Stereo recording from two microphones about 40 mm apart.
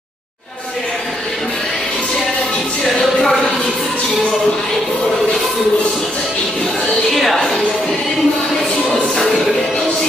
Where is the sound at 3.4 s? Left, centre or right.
Centre.